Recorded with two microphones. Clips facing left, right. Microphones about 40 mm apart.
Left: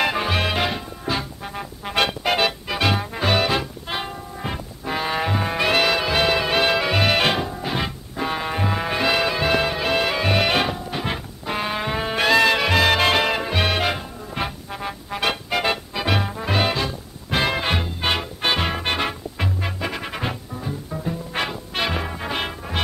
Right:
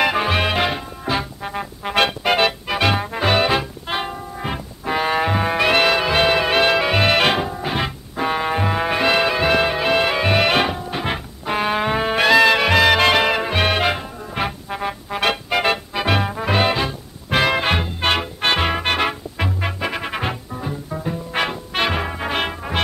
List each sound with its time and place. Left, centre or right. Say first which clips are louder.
0.0 s music: right 3 dB; centre